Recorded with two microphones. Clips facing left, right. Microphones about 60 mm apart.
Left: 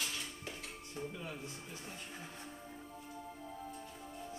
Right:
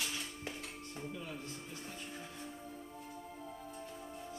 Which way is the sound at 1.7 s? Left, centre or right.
Centre.